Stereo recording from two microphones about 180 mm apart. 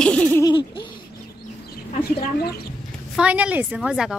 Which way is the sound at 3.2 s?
5° right (ahead or behind).